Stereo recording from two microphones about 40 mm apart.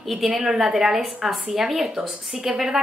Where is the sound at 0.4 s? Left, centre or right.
Centre.